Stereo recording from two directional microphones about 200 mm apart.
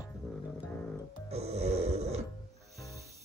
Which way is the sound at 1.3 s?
30° right (ahead or behind).